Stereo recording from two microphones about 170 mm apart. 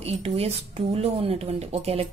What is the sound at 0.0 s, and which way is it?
A woman's voice, 35° right (ahead or behind).